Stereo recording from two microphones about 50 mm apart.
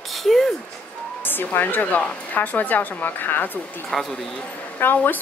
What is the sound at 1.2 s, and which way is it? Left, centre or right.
Speech, left.